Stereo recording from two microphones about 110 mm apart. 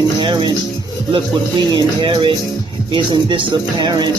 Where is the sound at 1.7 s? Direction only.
45° right (ahead or behind).